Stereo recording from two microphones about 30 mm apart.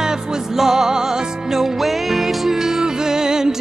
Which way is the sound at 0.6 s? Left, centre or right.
Centre.